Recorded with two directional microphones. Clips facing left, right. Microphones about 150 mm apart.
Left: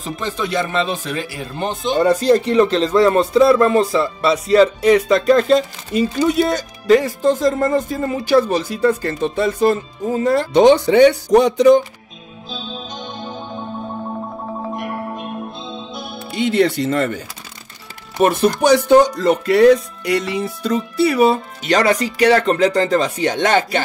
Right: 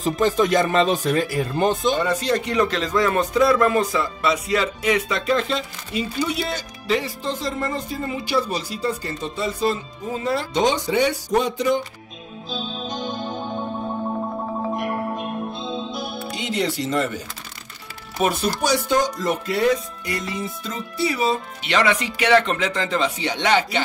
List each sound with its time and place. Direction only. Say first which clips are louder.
0.0 s speech: right 5 dB; 40° right (ahead or behind)
2.0 s speech: left 8 dB; 35° left (ahead or behind); by 11.8 s 75° left (ahead or behind)
12.4 s music: right 1 dB; centre (ahead or behind)
16.3 s speech: left 9 dB; 60° left (ahead or behind)
18.6 s music: left 10 dB; 65° left (ahead or behind)
21.6 s speech: left 5 dB; 40° left (ahead or behind)